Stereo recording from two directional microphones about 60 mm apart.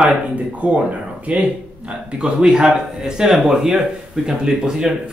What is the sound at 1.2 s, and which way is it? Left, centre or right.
A man's voice, right.